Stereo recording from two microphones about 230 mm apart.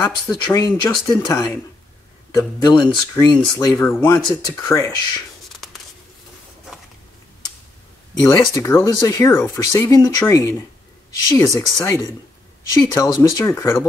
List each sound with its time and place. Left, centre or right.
0.0 s speech: centre
5.5 s writing: centre
8.1 s speech: centre